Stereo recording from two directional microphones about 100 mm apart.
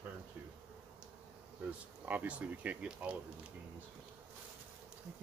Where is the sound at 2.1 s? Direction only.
15° right (ahead or behind).